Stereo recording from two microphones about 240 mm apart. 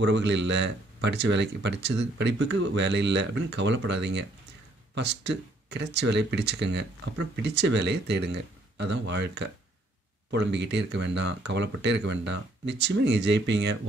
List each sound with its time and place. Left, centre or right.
0.0 s speech: right